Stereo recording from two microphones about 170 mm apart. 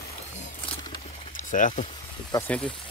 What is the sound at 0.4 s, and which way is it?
Wild animals, 35° left (ahead or behind).